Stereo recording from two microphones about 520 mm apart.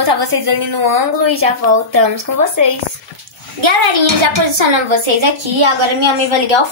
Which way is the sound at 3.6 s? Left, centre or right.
Right.